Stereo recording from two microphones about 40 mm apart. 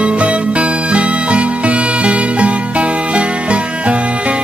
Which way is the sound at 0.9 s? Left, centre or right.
Right.